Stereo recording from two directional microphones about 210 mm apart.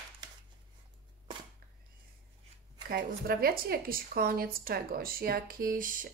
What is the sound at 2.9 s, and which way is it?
A woman's voice, 45° right (ahead or behind).